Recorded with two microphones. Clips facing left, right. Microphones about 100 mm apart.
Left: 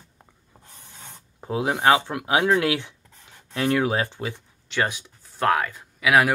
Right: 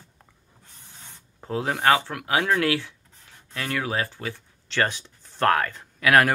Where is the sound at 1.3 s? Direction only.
15° left (ahead or behind).